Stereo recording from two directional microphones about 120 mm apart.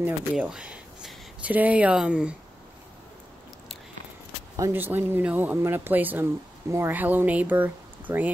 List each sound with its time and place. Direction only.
0.0 s speech: 10° right (ahead or behind)
4.7 s speech: 15° right (ahead or behind)